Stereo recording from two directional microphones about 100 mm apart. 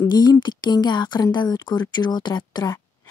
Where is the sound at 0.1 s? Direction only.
45° left (ahead or behind).